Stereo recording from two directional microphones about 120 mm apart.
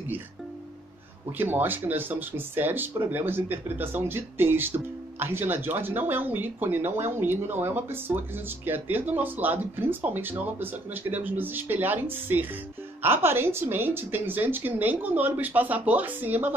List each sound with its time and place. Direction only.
1.4 s speech: 15° right (ahead or behind)